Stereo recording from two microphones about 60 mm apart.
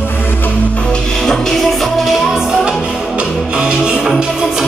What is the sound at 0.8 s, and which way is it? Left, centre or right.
Music, centre.